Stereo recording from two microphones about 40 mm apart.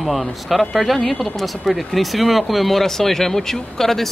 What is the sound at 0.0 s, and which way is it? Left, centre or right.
Speech, centre.